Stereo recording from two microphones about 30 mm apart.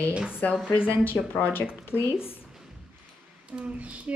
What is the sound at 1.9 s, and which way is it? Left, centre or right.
Speech, right.